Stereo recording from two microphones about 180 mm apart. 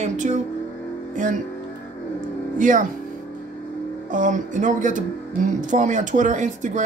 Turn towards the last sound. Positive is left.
turn(degrees=-40)  # may be behind; listen again after turning